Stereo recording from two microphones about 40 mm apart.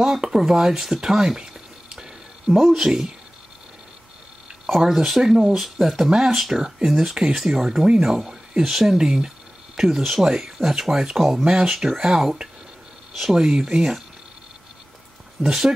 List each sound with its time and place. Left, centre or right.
0.0 s speech: centre
2.5 s speech: centre
4.6 s speech: centre
15.4 s speech: centre